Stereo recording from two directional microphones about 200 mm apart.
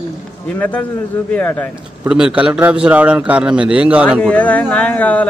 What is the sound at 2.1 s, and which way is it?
A man's voice, 5° right (ahead or behind).